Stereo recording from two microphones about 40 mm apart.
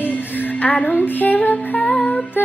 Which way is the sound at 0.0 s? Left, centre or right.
Left.